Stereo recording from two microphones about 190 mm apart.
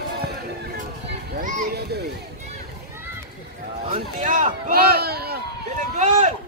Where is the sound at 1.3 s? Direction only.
55° right (ahead or behind).